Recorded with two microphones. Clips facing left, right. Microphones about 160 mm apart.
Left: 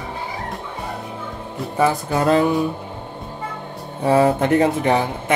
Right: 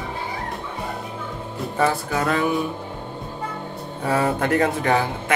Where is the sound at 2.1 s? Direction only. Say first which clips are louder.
Left 6 dB; 30° left (ahead or behind).